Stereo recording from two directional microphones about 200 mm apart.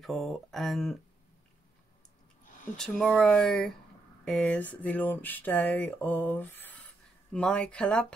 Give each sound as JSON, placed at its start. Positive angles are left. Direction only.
{"t": 0.0, "sound": "speech", "side_deg": 0}
{"t": 2.4, "sound": "a sound", "side_deg": 40}
{"t": 2.8, "sound": "speech", "side_deg": 5}